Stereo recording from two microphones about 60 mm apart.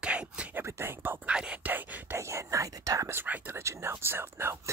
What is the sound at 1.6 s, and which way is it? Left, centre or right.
Speech, right.